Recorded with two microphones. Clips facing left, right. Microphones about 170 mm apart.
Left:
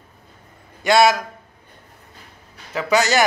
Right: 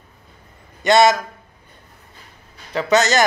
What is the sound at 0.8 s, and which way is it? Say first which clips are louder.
Speech: right 1 dB; 5° left (ahead or behind).